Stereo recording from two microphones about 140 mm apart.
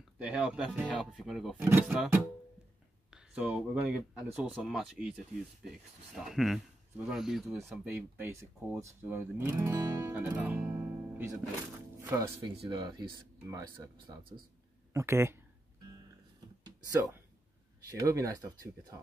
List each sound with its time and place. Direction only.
0.2 s speech: 5° right (ahead or behind)
1.6 s speech: 10° right (ahead or behind)
3.1 s speech: 5° right (ahead or behind)
7.8 s speech: 15° right (ahead or behind)
10.6 s music: 20° right (ahead or behind)
12.0 s speech: 20° right (ahead or behind)
12.6 s speech: 35° right (ahead or behind)
13.4 s speech: 25° right (ahead or behind)
14.9 s speech: 20° right (ahead or behind)
17.8 s speech: 25° right (ahead or behind)